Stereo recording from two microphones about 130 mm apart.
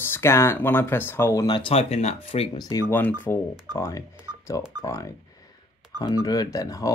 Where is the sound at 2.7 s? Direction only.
20° left (ahead or behind).